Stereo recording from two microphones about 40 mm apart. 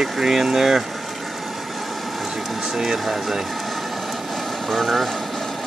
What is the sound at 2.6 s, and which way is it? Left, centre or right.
Speech, centre.